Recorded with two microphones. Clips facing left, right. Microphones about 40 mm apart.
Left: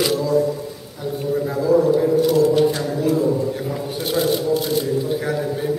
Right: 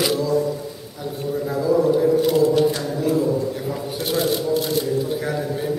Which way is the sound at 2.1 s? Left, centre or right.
Centre.